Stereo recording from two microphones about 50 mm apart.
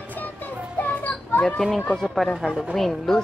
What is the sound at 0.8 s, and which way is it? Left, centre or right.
Children playing, left.